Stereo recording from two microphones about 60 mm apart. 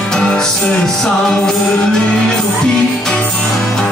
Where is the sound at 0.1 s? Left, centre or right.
Centre.